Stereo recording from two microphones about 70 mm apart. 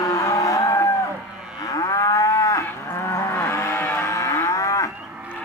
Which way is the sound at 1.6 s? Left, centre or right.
Left.